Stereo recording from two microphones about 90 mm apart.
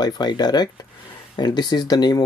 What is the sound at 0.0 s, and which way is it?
Speech, 50° left (ahead or behind).